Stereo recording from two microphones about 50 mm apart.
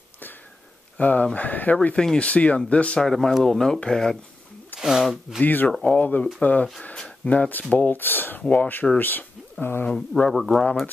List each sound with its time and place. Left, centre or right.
0.9 s speech: left
3.0 s speech: centre
4.7 s zipper: centre
5.0 s speech: centre
5.4 s speech: left
5.7 s speech: centre
5.9 s speech: left
8.4 s speech: left
9.9 s speech: centre
10.3 s speech: centre